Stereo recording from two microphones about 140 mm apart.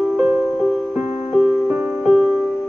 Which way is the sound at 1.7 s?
10° right (ahead or behind).